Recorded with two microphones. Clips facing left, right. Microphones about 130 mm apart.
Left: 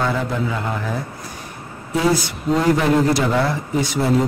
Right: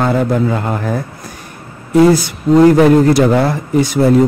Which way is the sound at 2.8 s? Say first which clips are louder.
Right 8 dB; 55° right (ahead or behind).